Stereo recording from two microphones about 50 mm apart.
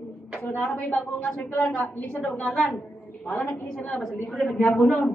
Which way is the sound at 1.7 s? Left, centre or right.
Left.